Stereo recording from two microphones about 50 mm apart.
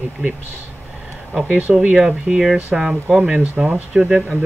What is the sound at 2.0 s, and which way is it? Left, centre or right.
Speech, centre.